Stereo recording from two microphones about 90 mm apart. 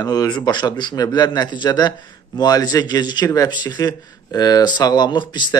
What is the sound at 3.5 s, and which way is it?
Speech, 55° left (ahead or behind).